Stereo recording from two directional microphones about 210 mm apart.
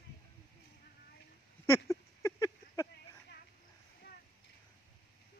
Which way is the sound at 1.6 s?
15° left (ahead or behind).